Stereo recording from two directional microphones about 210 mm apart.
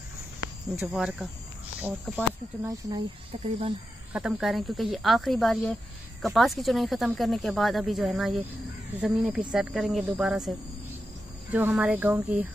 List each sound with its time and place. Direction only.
0.7 s speech: 5° right (ahead or behind)
2.6 s speech: 20° right (ahead or behind)
3.4 s speech: 30° right (ahead or behind)
4.1 s speech: 5° right (ahead or behind)
11.5 s speech: 5° right (ahead or behind)